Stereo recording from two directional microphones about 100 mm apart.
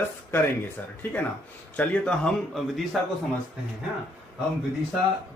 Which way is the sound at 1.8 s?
10° left (ahead or behind).